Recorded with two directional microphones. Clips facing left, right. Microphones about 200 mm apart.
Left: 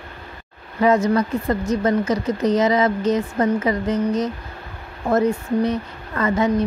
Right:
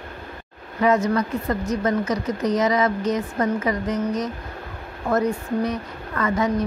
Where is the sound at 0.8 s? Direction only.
30° left (ahead or behind).